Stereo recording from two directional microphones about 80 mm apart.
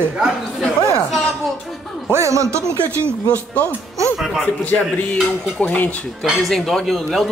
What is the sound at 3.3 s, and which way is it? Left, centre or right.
Speech, left.